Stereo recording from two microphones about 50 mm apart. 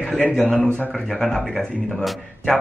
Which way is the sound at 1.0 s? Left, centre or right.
Centre.